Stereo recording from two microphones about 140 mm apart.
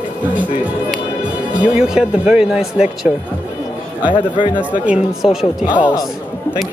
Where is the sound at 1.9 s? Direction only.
10° right (ahead or behind).